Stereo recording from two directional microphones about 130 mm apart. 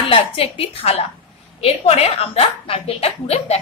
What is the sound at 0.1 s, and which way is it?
A woman's voice, 45° left (ahead or behind).